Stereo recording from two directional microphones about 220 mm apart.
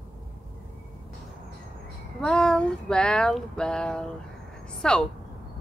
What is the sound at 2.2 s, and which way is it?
A woman's voice, 5° left (ahead or behind).